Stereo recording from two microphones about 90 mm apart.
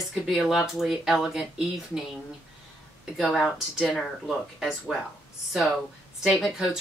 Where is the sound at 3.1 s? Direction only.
Centre (ahead or behind).